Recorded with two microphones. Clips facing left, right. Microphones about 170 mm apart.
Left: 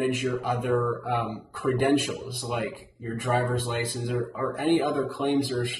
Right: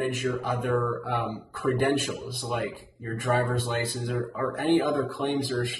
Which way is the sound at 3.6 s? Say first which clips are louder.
Even; centre (ahead or behind).